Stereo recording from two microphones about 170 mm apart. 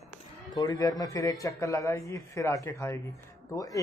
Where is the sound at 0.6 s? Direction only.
20° left (ahead or behind).